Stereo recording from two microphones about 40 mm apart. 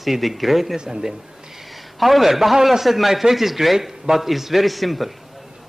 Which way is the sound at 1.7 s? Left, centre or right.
Centre.